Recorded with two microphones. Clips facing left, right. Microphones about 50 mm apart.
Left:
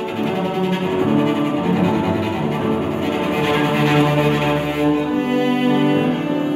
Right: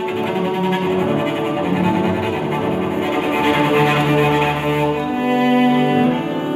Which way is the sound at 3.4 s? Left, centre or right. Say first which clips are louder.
Right 3 dB; centre.